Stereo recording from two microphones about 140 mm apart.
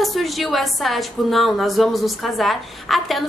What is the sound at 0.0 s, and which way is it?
A woman's voice, centre (ahead or behind).